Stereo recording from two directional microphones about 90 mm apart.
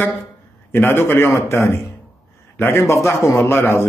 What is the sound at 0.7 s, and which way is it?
A man's voice, 20° left (ahead or behind).